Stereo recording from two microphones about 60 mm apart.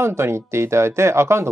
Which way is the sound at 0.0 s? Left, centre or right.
Right.